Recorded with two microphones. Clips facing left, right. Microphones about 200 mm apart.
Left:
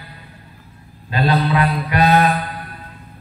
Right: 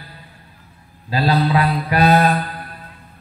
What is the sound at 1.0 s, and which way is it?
Mantra, 35° right (ahead or behind).